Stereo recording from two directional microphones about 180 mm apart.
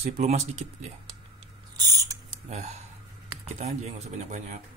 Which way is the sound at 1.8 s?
20° right (ahead or behind).